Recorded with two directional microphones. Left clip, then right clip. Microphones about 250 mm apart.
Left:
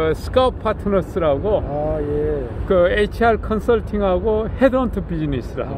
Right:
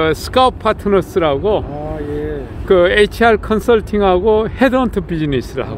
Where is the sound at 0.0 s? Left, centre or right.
Right.